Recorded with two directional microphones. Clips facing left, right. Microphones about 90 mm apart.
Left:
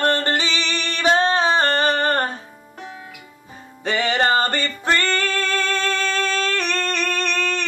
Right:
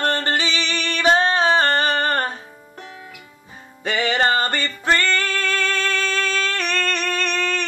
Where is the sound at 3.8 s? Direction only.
30° left (ahead or behind).